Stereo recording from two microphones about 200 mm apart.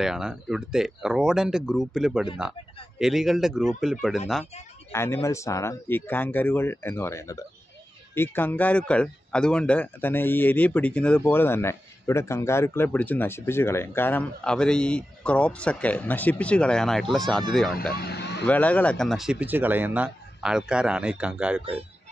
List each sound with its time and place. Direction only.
0.0 s speech: centre (ahead or behind)
4.9 s a man's voice: 10° left (ahead or behind)
17.9 s speech: 55° left (ahead or behind)
18.4 s speech: 5° left (ahead or behind)